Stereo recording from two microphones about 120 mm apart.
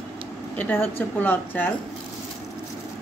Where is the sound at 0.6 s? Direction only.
15° left (ahead or behind).